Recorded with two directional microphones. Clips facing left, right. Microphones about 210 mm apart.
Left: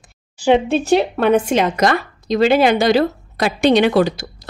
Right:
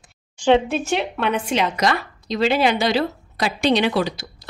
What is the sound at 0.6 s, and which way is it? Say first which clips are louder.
Speech: left 7 dB; 30° left (ahead or behind).